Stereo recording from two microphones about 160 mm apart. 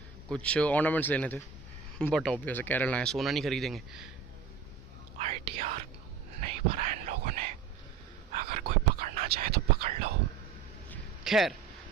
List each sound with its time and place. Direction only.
0.3 s speech: 5° left (ahead or behind)
5.1 s whispering: 45° right (ahead or behind)
6.4 s a sound: 45° right (ahead or behind)
7.0 s whispering: 55° right (ahead or behind)
8.5 s whispering: 70° right (ahead or behind)
11.2 s speech: centre (ahead or behind)